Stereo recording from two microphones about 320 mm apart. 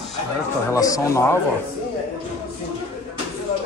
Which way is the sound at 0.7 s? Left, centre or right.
Centre.